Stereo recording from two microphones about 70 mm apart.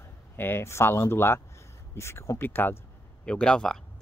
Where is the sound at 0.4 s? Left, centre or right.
Left.